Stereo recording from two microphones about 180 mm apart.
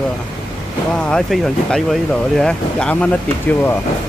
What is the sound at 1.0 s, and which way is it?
Speech, centre (ahead or behind).